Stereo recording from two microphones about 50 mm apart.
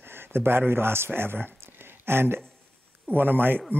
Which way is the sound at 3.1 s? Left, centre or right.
Right.